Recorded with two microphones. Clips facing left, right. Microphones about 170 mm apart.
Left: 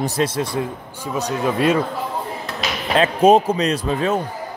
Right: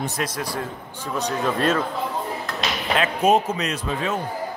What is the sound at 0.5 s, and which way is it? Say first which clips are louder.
Speech: left 5 dB; 10° left (ahead or behind).